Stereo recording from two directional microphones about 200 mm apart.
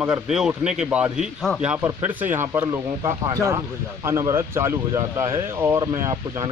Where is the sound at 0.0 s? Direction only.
5° right (ahead or behind).